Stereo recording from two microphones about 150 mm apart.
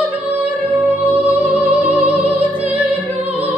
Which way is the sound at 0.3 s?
10° right (ahead or behind).